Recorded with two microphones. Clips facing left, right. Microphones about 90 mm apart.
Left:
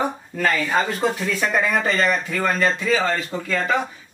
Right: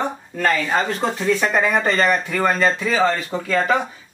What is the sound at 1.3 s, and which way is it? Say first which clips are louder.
Speech: right 3 dB; 30° right (ahead or behind).